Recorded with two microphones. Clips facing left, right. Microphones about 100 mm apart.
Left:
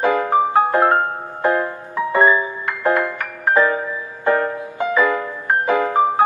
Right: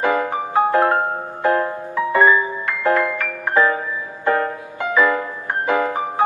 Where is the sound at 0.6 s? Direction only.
20° left (ahead or behind).